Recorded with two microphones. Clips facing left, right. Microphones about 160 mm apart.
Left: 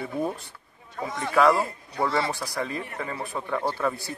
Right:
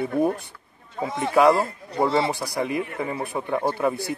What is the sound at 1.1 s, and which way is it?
A man's voice, 20° right (ahead or behind).